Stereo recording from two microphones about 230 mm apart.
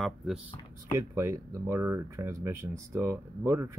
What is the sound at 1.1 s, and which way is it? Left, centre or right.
Speech, centre.